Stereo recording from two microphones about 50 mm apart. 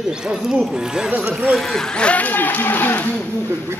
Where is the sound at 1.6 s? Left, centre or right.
Centre.